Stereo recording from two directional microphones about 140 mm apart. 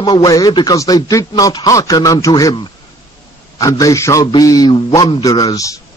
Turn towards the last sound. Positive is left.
turn(degrees=25)  # may be behind; listen again after turning